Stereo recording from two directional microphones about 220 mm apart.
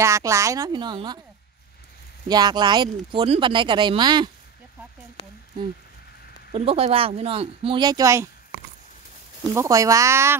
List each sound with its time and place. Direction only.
0.0 s speech: 15° right (ahead or behind)
2.2 s speech: 20° right (ahead or behind)
6.5 s speech: 25° right (ahead or behind)
9.5 s speech: 15° right (ahead or behind)